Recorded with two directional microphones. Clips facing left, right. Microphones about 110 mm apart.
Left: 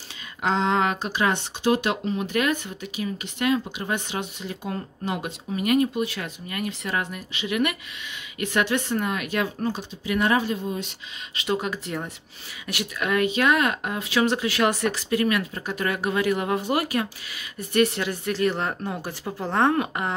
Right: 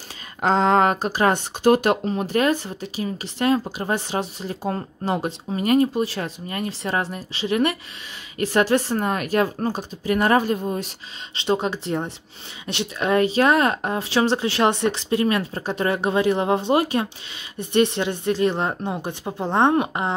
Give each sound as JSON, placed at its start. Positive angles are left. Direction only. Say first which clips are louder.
{"t": 0.4, "sound": "speech", "louder": "right 5 dB", "side_deg": -40}
{"t": 11.3, "sound": "speech", "louder": "right 4 dB", "side_deg": -30}